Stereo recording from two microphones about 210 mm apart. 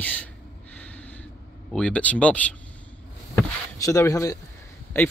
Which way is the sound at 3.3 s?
15° left (ahead or behind).